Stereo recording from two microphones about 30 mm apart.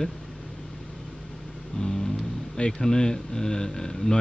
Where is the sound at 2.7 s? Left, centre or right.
Centre.